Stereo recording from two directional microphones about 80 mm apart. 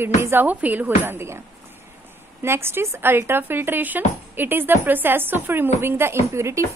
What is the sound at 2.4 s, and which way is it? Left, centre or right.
Speech, right.